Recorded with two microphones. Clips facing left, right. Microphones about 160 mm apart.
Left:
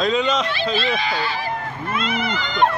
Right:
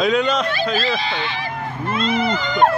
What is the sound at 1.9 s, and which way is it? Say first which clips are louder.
Speech: right 4 dB; 35° right (ahead or behind).